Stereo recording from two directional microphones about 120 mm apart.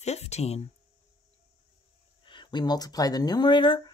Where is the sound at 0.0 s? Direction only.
65° left (ahead or behind).